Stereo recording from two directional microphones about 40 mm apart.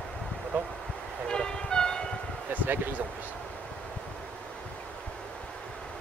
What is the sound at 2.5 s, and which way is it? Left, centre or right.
Basketball bounce, right.